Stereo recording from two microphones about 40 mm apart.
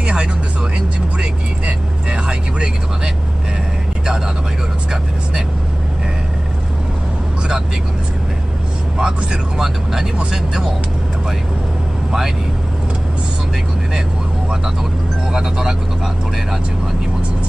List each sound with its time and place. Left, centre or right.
0.0 s music: right
8.9 s speech: centre
15.3 s speech: centre